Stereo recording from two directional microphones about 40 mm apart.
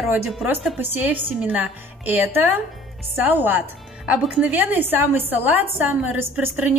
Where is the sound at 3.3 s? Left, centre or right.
Right.